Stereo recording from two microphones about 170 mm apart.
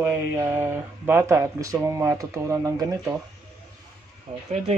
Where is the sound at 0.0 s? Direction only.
15° right (ahead or behind).